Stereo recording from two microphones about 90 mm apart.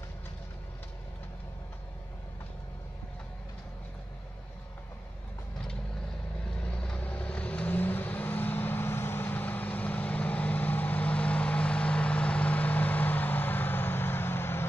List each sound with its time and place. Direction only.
6.6 s vehicle: 10° left (ahead or behind)